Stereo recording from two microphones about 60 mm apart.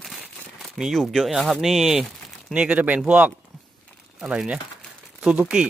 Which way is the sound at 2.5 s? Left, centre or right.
Right.